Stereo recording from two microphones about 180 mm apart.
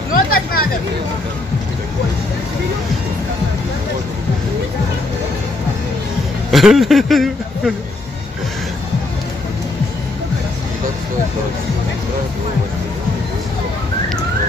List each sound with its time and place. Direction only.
0.1 s hubbub: 55° left (ahead or behind)
6.5 s speech: centre (ahead or behind)